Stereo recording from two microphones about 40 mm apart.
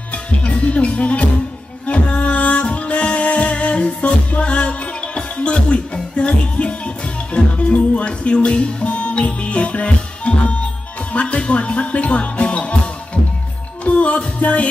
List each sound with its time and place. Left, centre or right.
0.1 s music: left